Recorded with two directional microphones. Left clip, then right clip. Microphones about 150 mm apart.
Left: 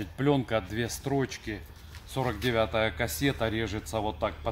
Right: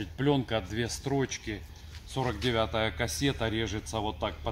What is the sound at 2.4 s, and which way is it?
Speech, 20° left (ahead or behind).